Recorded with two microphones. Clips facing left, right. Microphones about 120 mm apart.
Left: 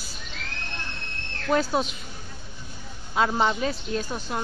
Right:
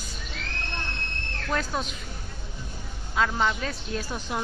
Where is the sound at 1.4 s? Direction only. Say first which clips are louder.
Left 6 dB; 25° left (ahead or behind).